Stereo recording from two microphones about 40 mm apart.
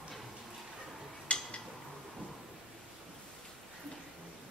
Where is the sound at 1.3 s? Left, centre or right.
Left.